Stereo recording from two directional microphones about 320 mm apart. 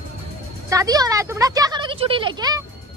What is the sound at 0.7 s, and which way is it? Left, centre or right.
Speech, centre.